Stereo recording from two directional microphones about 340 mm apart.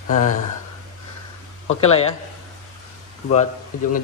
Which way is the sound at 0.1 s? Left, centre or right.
Left.